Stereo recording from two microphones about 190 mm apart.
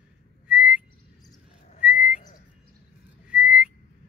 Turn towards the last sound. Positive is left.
turn(degrees=-5)  # may be behind; listen again after turning